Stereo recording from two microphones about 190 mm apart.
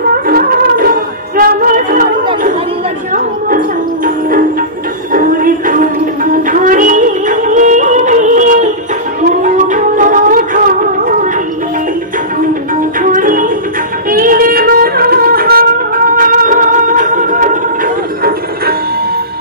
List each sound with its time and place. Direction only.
0.3 s music: 50° right (ahead or behind)
3.1 s music: 45° right (ahead or behind)
13.0 s music: 45° right (ahead or behind)